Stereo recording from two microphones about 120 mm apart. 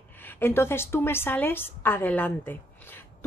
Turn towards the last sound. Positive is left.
turn(degrees=15)  # may be behind; listen again after turning